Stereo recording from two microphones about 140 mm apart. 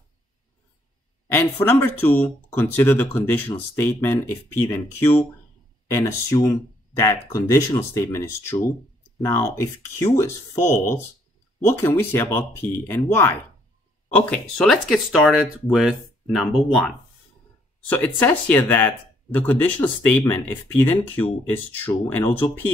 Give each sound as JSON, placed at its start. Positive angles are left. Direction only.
{"t": 1.3, "sound": "speech", "side_deg": 15}
{"t": 17.8, "sound": "speech", "side_deg": 15}